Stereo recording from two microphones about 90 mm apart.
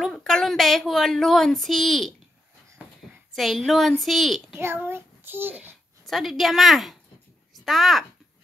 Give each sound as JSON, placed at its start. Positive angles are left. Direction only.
{"t": 0.0, "sound": "speech", "side_deg": 5}
{"t": 3.3, "sound": "speech", "side_deg": 0}
{"t": 4.6, "sound": "a child's voice", "side_deg": -25}
{"t": 6.0, "sound": "speech", "side_deg": 0}